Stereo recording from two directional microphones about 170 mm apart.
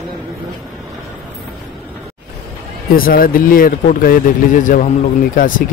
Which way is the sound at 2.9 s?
60° left (ahead or behind).